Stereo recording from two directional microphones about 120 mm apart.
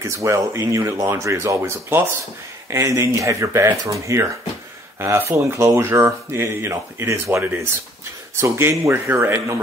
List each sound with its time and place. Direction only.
0.0 s speech: 25° right (ahead or behind)